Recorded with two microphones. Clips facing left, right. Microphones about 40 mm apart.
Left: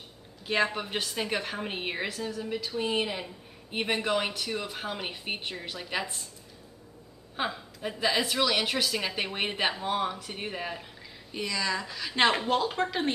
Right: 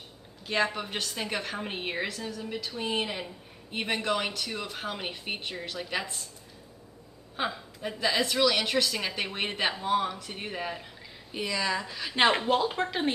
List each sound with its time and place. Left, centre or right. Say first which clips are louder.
0.5 s a woman's voice: left 1 dB; centre
7.3 s a woman's voice: even; centre
11.3 s a woman's voice: right 1 dB; centre